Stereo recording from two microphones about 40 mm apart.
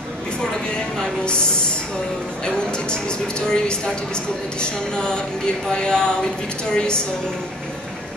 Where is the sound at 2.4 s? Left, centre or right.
Left.